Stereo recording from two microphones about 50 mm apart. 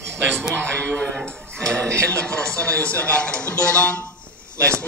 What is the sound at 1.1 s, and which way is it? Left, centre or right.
Speech, centre.